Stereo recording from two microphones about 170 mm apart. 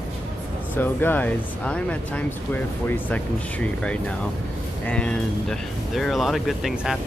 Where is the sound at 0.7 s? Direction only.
10° left (ahead or behind).